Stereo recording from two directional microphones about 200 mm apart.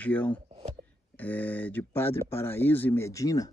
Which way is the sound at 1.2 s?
10° left (ahead or behind).